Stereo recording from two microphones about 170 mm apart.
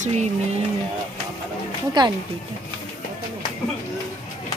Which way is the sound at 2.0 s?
25° right (ahead or behind).